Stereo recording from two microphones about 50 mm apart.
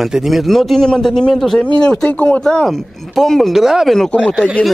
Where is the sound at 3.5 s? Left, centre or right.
Centre.